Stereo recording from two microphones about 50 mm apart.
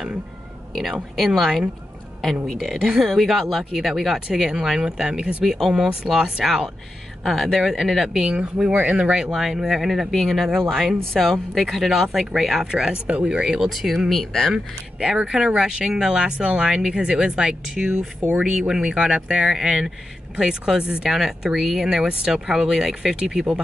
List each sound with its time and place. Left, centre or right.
0.7 s speech: centre
5.4 s speech: centre; by 9.1 s right
9.1 s speech: centre
13.7 s speech: centre
14.5 s speech: centre
21.1 s speech: centre